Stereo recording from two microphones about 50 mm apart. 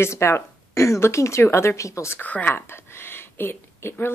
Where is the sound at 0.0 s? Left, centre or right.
Left.